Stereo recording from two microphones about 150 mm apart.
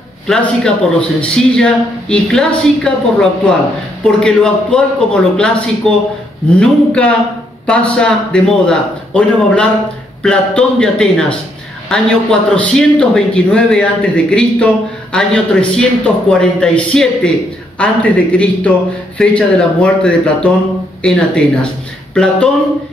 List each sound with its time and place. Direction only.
0.3 s a man's voice: 5° left (ahead or behind)